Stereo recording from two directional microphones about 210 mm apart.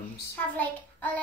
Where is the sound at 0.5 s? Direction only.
10° left (ahead or behind).